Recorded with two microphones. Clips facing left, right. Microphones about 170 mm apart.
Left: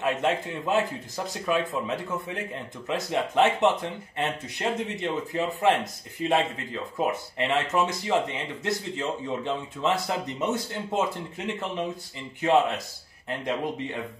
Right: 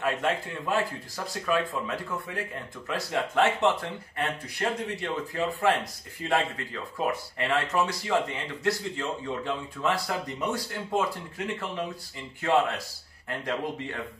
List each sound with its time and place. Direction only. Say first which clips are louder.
0.0 s speech: left 2 dB; 20° left (ahead or behind)